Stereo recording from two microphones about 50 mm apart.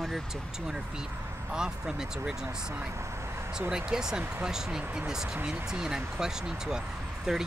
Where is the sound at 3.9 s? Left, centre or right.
Centre.